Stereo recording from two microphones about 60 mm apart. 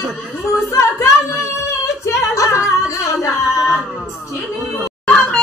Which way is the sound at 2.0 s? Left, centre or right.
Left.